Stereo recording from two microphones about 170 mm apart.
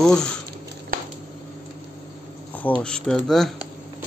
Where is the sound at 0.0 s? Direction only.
5° left (ahead or behind).